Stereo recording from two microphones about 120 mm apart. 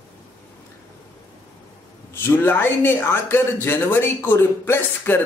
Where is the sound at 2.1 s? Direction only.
15° left (ahead or behind).